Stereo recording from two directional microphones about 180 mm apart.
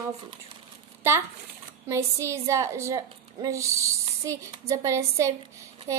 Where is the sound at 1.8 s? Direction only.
15° right (ahead or behind).